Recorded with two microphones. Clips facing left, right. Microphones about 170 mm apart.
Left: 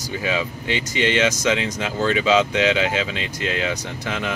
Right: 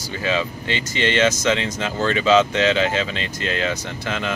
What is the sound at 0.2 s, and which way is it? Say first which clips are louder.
Speech: right 3 dB; 10° left (ahead or behind).